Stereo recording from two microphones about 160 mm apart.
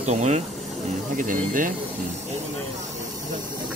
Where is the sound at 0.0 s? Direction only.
45° right (ahead or behind).